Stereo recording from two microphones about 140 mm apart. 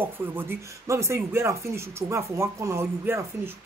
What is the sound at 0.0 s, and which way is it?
A woman's voice, 15° right (ahead or behind).